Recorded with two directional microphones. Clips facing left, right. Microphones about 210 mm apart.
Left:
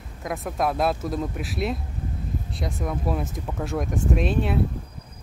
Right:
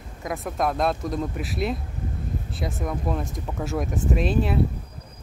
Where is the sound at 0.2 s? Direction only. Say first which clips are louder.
Even; centre (ahead or behind).